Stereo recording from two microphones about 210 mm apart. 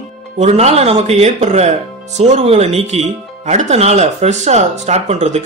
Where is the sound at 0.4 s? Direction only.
30° right (ahead or behind).